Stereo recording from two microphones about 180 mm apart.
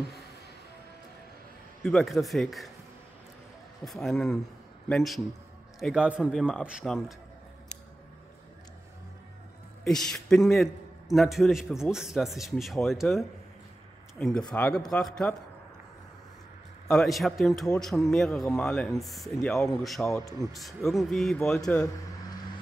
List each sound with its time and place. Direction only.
1.9 s a man's voice: centre (ahead or behind)
3.8 s a man's voice: centre (ahead or behind)
9.8 s a man's voice: centre (ahead or behind)
16.8 s a man's voice: centre (ahead or behind)
20.1 s speech: 15° left (ahead or behind)
20.5 s a man's voice: centre (ahead or behind)